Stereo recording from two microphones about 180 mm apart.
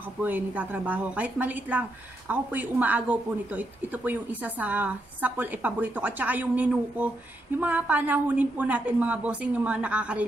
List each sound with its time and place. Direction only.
0.0 s a woman's voice: 10° right (ahead or behind)